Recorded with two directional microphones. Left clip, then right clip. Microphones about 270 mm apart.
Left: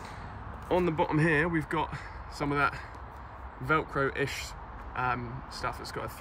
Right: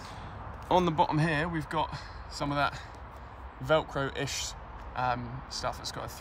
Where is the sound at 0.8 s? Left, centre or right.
Centre.